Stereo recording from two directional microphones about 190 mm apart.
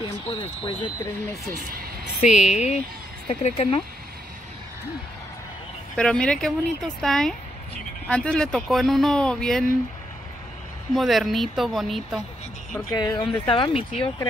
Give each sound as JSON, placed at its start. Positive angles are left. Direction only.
{"t": 0.3, "sound": "speech", "side_deg": 25}
{"t": 2.2, "sound": "speech", "side_deg": 40}
{"t": 5.9, "sound": "speech", "side_deg": 5}
{"t": 11.0, "sound": "speech", "side_deg": 0}
{"t": 12.9, "sound": "speech", "side_deg": 20}